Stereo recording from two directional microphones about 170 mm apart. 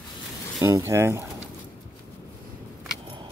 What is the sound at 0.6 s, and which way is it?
Speech, 15° right (ahead or behind).